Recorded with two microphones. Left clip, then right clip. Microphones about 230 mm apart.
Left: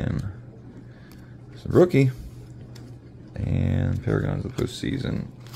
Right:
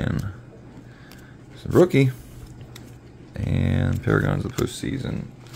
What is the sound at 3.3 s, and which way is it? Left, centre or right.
Speech, centre.